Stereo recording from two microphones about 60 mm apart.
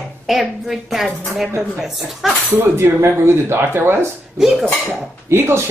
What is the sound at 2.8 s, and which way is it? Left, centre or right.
Speech, right.